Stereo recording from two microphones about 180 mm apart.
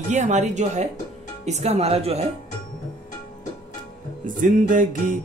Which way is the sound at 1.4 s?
40° right (ahead or behind).